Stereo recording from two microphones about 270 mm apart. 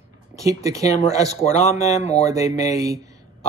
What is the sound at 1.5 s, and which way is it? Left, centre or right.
Speech, left.